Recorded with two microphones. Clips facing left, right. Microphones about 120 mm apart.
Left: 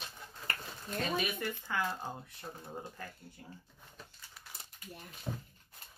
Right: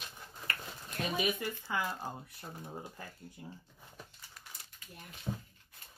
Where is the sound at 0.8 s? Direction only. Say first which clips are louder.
Right 1 dB; 10° right (ahead or behind).